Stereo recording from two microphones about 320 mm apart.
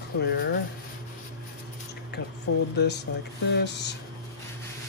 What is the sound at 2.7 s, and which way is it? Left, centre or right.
Speech, left.